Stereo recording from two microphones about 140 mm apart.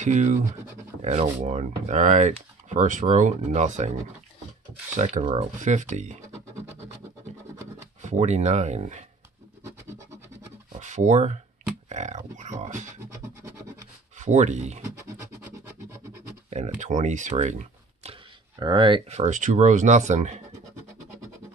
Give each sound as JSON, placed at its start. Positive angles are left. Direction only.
{"t": 0.0, "sound": "speech", "side_deg": -60}
{"t": 1.4, "sound": "speech", "side_deg": -60}
{"t": 4.9, "sound": "speech", "side_deg": -55}
{"t": 8.0, "sound": "speech", "side_deg": -55}
{"t": 10.7, "sound": "a sound", "side_deg": -60}
{"t": 11.9, "sound": "speech", "side_deg": -55}
{"t": 14.1, "sound": "speech", "side_deg": -60}
{"t": 16.4, "sound": "speech", "side_deg": -55}
{"t": 18.6, "sound": "speech", "side_deg": -35}
{"t": 19.0, "sound": "speech", "side_deg": -55}